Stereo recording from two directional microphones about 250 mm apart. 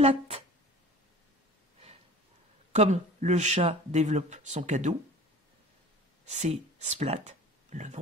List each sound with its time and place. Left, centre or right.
0.0 s speech: right
2.7 s speech: right
6.2 s speech: right